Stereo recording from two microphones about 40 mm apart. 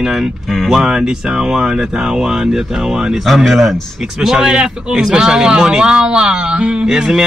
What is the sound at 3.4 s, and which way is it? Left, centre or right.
A man's voice, centre.